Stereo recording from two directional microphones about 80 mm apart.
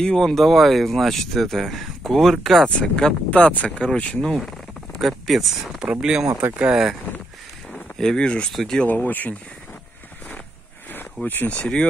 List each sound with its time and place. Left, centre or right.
0.0 s speech: centre
2.8 s speech: centre
5.0 s speech: centre
7.7 s speech: centre
8.8 s speech: left
11.2 s speech: centre